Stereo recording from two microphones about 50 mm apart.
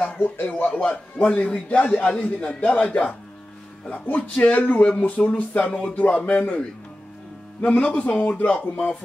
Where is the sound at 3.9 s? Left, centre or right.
Left.